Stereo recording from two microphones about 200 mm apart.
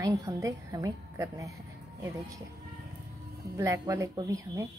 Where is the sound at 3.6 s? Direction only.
15° right (ahead or behind).